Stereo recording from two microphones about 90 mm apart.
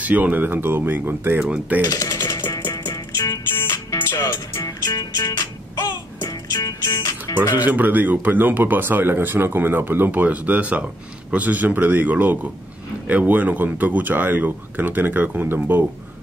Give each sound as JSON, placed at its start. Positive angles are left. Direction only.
{"t": 0.0, "sound": "speech", "side_deg": -15}
{"t": 1.4, "sound": "coin", "side_deg": -10}
{"t": 1.9, "sound": "speech", "side_deg": 40}
{"t": 2.1, "sound": "music", "side_deg": 30}
{"t": 3.5, "sound": "music", "side_deg": 25}
{"t": 7.5, "sound": "speech", "side_deg": -20}